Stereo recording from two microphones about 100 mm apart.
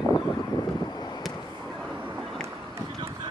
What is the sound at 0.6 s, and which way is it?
Vehicle, 40° left (ahead or behind).